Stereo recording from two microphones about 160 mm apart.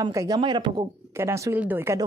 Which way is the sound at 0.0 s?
20° right (ahead or behind).